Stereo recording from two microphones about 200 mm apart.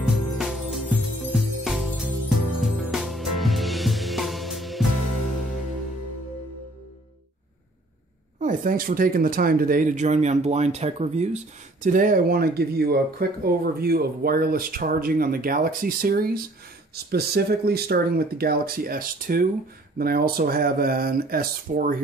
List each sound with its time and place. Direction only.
0.0 s music: centre (ahead or behind)
8.4 s speech: 40° right (ahead or behind)